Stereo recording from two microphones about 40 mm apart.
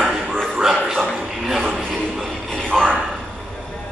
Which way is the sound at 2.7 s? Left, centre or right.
Centre.